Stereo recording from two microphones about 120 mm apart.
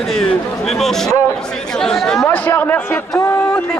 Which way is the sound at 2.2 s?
15° left (ahead or behind).